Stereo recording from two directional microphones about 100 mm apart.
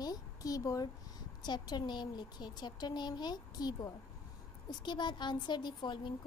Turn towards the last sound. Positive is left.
turn(degrees=50)  # may be behind; listen again after turning